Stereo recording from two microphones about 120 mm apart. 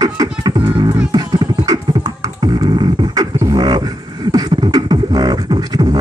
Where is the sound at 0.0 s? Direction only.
30° right (ahead or behind).